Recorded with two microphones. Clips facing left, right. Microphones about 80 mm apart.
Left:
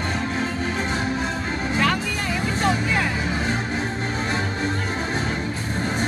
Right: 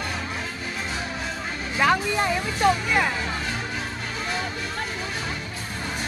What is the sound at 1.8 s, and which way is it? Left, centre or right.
Music, centre.